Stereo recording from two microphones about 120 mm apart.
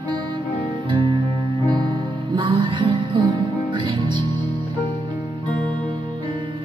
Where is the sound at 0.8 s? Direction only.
40° right (ahead or behind).